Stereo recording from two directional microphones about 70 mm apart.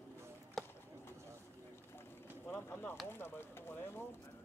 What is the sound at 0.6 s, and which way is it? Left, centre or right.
Bird, centre.